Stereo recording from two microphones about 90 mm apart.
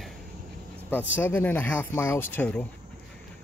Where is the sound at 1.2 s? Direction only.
20° left (ahead or behind).